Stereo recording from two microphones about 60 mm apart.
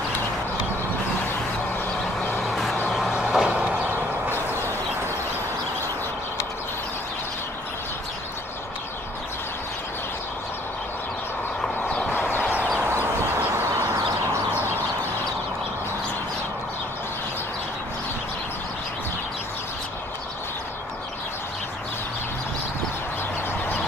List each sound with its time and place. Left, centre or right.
2.3 s vehicle: centre
12.1 s a sound: left
12.7 s bird: right